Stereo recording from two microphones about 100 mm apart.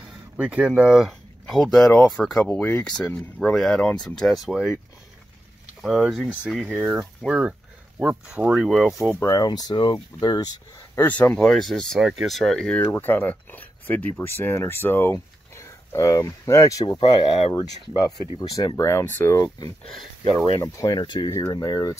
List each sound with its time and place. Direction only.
0.4 s speech: 10° right (ahead or behind)
5.8 s speech: 5° right (ahead or behind)
9.2 s speech: 35° left (ahead or behind)
9.5 s speech: 45° left (ahead or behind)
11.0 s speech: 15° left (ahead or behind)
12.8 s speech: 20° left (ahead or behind)
17.0 s speech: 50° left (ahead or behind)
18.9 s speech: 30° left (ahead or behind)
19.9 s speech: 5° left (ahead or behind)
20.5 s speech: 35° left (ahead or behind)
20.9 s speech: 50° left (ahead or behind)
21.3 s speech: 40° left (ahead or behind)